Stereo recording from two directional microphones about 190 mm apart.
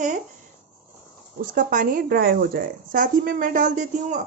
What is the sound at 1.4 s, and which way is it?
Speech, 45° right (ahead or behind).